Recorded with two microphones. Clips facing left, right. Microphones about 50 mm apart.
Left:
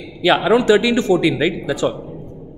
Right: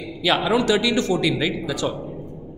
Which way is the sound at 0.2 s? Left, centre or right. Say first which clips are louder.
Left 5 dB; centre.